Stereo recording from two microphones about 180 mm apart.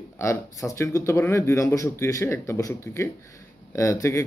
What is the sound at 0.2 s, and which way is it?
Speech, 15° left (ahead or behind).